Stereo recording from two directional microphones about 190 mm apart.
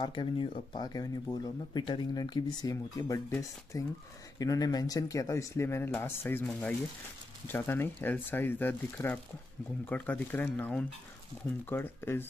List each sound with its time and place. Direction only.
0.0 s speech: 25° left (ahead or behind)